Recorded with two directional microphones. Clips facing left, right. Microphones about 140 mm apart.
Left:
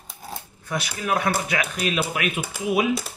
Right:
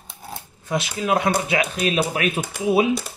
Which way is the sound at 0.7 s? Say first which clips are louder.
Right 4 dB; 25° right (ahead or behind).